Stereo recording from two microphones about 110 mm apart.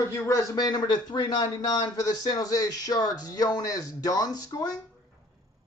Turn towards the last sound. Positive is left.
turn(degrees=35)  # may be behind; listen again after turning